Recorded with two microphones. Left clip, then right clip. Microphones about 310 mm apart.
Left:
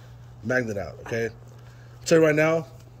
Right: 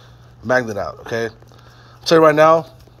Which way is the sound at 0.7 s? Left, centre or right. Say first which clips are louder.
Right 7 dB; right.